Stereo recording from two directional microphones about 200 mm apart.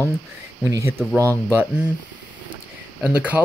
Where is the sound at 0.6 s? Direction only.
15° right (ahead or behind).